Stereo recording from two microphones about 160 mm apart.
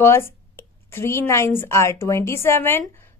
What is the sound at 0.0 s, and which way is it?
Speech, 15° left (ahead or behind).